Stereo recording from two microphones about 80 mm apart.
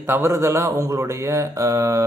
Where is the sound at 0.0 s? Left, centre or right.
Right.